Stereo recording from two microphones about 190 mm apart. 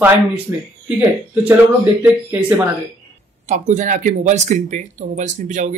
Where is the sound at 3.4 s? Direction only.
40° right (ahead or behind).